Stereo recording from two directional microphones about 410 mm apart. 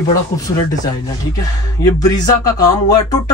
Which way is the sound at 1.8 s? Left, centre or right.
Centre.